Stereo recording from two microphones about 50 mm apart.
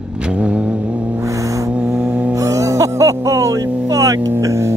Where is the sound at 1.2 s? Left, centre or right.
Right.